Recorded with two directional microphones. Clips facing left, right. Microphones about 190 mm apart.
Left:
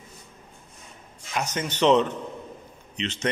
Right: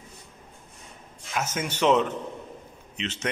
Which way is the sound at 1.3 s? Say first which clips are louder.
Left 1 dB; 5° right (ahead or behind).